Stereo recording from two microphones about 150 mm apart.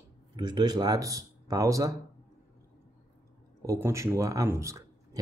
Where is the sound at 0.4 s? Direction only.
30° right (ahead or behind).